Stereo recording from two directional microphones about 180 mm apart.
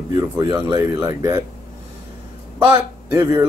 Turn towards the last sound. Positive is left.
turn(degrees=-15)  # may be behind; listen again after turning